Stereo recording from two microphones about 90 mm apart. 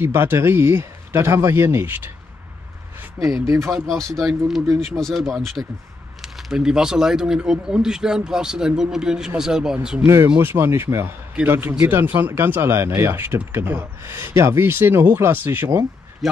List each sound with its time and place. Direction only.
0.0 s speech: 25° right (ahead or behind)
3.4 s speech: 30° right (ahead or behind)
4.7 s speech: 5° left (ahead or behind)
10.0 s speech: 30° right (ahead or behind)